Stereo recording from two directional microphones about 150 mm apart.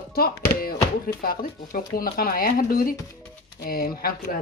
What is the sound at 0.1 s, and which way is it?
Speech, 85° left.